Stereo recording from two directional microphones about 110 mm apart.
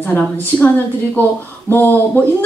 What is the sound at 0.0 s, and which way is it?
Speech, 15° left (ahead or behind).